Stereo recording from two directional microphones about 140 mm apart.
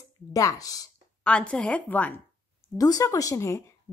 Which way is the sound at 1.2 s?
10° left (ahead or behind).